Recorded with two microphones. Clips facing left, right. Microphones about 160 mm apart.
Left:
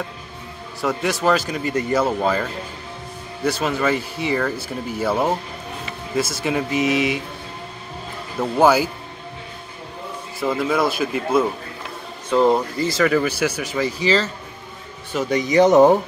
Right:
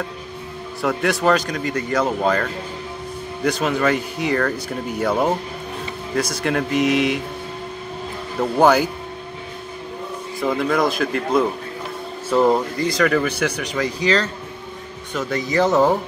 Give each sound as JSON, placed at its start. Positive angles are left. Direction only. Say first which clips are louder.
{"t": 0.8, "sound": "speech", "louder": "right 1 dB", "side_deg": 0}
{"t": 8.4, "sound": "speech", "louder": "right 1 dB", "side_deg": 5}
{"t": 10.4, "sound": "speech", "louder": "right 1 dB", "side_deg": 0}
{"t": 15.1, "sound": "speech", "louder": "left 4 dB", "side_deg": 15}